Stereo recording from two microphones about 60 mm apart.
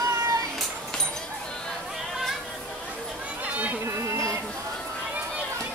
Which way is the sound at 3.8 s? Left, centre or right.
Right.